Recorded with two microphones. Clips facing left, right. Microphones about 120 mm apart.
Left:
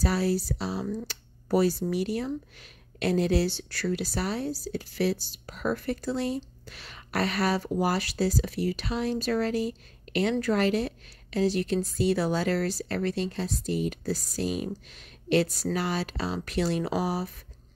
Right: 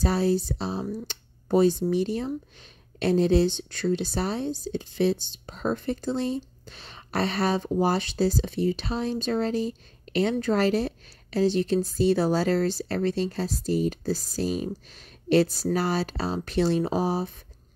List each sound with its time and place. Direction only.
0.0 s speech: 25° right (ahead or behind)